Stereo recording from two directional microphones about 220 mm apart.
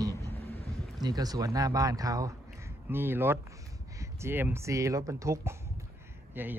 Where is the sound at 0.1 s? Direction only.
10° left (ahead or behind).